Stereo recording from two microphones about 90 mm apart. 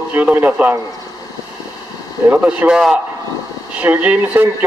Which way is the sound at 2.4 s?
10° right (ahead or behind).